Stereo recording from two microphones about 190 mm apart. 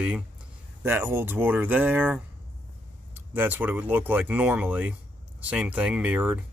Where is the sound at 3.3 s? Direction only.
10° right (ahead or behind).